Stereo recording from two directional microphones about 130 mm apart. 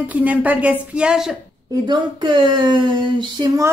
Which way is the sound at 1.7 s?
35° right (ahead or behind).